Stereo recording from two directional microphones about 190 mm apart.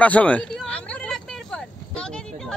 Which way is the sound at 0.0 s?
5° left (ahead or behind).